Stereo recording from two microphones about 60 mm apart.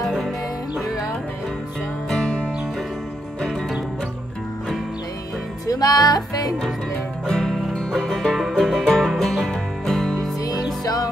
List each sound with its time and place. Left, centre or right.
0.0 s music: centre
2.0 s music: centre
5.7 s music: left
7.2 s music: centre
10.8 s music: left